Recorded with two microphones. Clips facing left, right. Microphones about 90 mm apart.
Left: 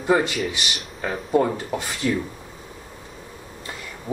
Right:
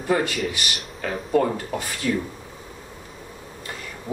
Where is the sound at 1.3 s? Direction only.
25° left (ahead or behind).